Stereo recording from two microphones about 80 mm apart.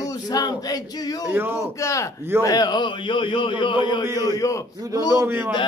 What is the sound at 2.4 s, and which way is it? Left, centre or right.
A man's voice, left.